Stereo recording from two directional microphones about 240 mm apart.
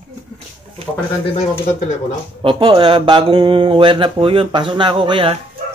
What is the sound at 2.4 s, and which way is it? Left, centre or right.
Speech, right.